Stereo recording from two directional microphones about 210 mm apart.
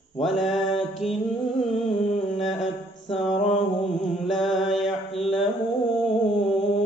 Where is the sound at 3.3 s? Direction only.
30° left (ahead or behind).